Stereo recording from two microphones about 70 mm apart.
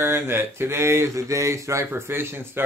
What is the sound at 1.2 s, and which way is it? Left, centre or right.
Speech, right.